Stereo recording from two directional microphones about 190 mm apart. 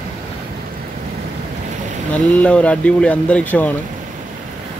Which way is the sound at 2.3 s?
5° left (ahead or behind).